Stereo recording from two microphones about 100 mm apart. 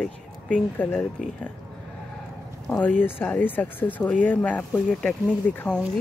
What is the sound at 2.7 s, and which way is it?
Speech, 15° left (ahead or behind).